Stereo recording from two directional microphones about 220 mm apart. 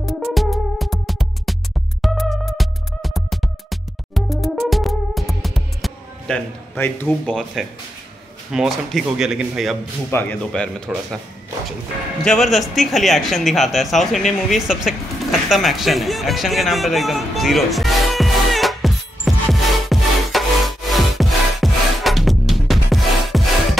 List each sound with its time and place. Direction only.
0.0 s music: centre (ahead or behind)
8.5 s speech: centre (ahead or behind)
12.3 s speech: centre (ahead or behind)
15.4 s music: centre (ahead or behind)